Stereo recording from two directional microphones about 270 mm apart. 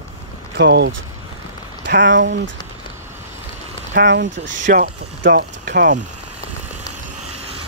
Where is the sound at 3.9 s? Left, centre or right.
Right.